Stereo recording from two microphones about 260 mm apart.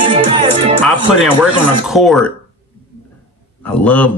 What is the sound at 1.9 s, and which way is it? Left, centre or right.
Speech, centre.